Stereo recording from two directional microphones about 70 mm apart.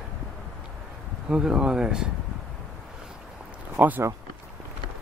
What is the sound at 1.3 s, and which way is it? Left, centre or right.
Speech, centre.